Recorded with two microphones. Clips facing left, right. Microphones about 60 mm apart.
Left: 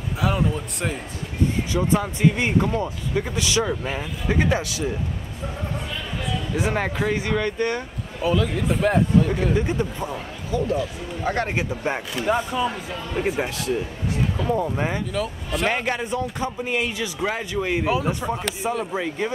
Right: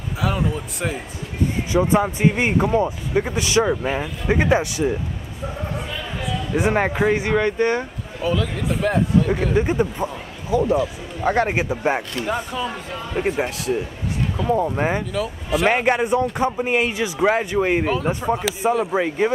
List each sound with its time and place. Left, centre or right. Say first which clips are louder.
0.2 s speech: even; centre
1.7 s speech: right 4 dB; centre
6.2 s a sound: right 4 dB; centre
6.7 s speech: right 6 dB; centre
8.2 s speech: left 1 dB; centre
9.6 s speech: right 4 dB; right
9.9 s speech: right 2 dB; centre
12.1 s speech: left 2 dB; centre; by 15.0 s right
15.1 s speech: right 3 dB; centre
15.7 s speech: right 6 dB; centre
16.5 s speech: right 5 dB; right
17.8 s speech: right 2 dB; centre
18.9 s speech: right 6 dB; right